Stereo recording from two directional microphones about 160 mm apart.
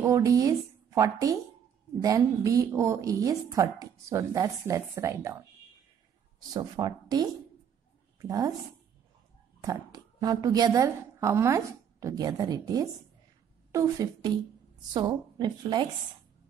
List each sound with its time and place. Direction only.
0.0 s a woman's voice: 20° right (ahead or behind)
6.5 s a woman's voice: 25° right (ahead or behind)
9.6 s a woman's voice: 25° right (ahead or behind)